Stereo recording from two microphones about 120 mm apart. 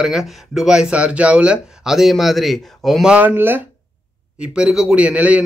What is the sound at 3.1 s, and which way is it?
Speech, 15° right (ahead or behind).